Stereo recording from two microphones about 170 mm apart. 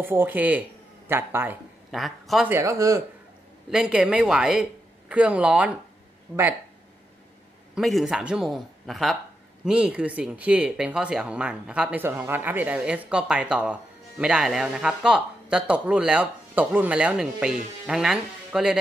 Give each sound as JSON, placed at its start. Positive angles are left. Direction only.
{"t": 0.0, "sound": "speech", "side_deg": -15}
{"t": 1.9, "sound": "speech", "side_deg": 0}
{"t": 2.5, "sound": "speech", "side_deg": -15}
{"t": 3.7, "sound": "speech", "side_deg": -5}
{"t": 6.3, "sound": "speech", "side_deg": 10}
{"t": 7.7, "sound": "speech", "side_deg": 0}